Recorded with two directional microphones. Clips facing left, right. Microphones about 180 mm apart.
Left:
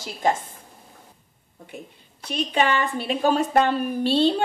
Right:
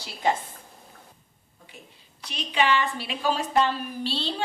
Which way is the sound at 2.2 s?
50° left (ahead or behind).